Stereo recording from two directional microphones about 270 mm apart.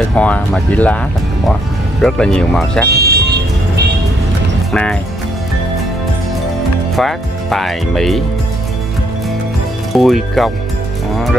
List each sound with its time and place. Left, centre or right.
0.1 s speech: centre
2.9 s speech: right
7.0 s speech: centre
9.9 s speech: centre